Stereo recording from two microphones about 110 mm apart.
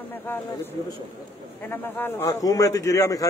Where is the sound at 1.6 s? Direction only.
20° left (ahead or behind).